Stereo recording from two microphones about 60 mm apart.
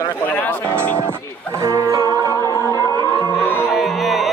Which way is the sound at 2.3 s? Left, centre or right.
Left.